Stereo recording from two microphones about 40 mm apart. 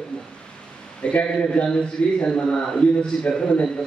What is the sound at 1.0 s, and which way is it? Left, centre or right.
A man's voice, left.